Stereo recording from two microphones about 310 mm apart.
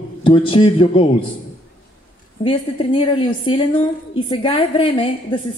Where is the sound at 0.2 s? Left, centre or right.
Centre.